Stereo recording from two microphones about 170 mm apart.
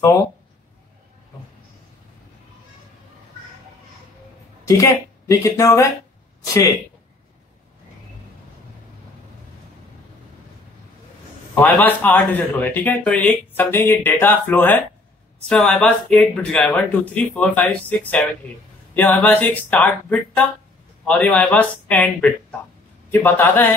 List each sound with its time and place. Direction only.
4.6 s speech: 20° left (ahead or behind)
11.6 s speech: 10° left (ahead or behind)